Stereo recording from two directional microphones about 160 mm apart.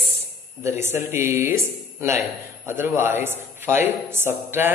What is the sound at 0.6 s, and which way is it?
Speech, 15° right (ahead or behind).